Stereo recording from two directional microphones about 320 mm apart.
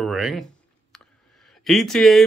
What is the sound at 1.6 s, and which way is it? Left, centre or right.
Speech, centre.